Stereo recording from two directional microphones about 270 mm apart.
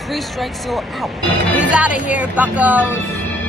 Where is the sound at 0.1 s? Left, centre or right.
Centre.